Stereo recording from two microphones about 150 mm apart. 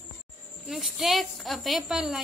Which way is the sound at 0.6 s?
Centre (ahead or behind).